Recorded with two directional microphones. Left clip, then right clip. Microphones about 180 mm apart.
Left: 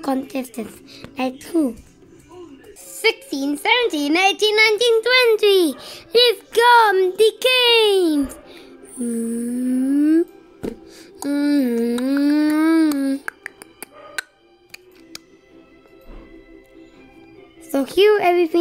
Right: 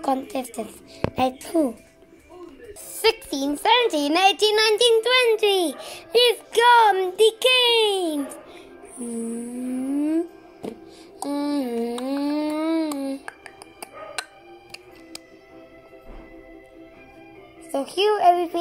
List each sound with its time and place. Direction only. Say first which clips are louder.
0.0 s a woman's voice: left 1 dB; 20° left (ahead or behind)
3.0 s a child's voice: left 2 dB; 10° left (ahead or behind); by 9.0 s 30° left (ahead or behind)
9.9 s music: left 7 dB; 30° left (ahead or behind)
17.6 s a woman's voice: left 6 dB; 40° left (ahead or behind)